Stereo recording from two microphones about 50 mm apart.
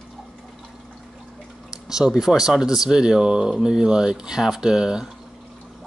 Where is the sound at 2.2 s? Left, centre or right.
Centre.